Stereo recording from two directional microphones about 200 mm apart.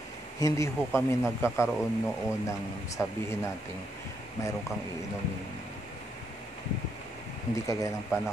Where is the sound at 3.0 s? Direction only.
10° left (ahead or behind).